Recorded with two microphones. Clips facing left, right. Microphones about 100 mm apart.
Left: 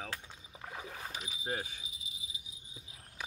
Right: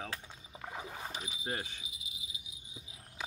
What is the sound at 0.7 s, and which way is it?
Boat, 20° right (ahead or behind).